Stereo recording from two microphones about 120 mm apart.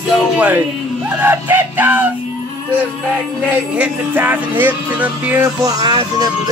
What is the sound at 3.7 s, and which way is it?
Music, 15° right (ahead or behind).